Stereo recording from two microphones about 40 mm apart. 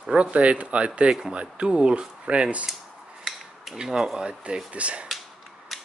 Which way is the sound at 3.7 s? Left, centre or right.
Centre.